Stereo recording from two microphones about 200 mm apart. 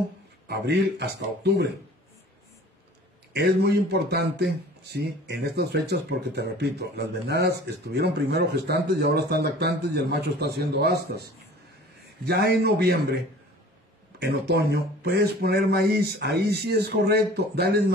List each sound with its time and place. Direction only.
0.5 s speech: 55° right (ahead or behind)
3.3 s speech: 55° right (ahead or behind)
12.3 s speech: 55° right (ahead or behind)
14.2 s speech: 55° right (ahead or behind)